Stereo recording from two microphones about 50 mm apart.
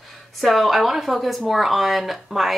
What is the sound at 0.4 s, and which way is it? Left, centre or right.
A woman's voice, centre.